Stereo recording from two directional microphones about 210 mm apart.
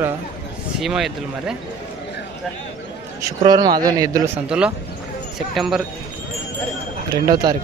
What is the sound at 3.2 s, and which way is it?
A man's voice, 20° right (ahead or behind).